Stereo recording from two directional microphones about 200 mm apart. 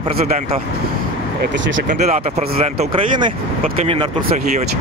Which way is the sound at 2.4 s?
45° right (ahead or behind).